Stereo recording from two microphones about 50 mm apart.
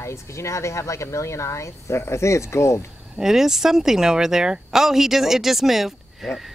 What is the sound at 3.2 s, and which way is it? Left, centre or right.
Speech, centre.